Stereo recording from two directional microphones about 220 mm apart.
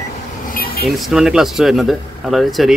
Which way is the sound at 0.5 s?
40° left (ahead or behind).